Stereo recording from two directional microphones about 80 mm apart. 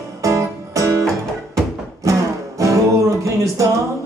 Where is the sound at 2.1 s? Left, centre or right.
Right.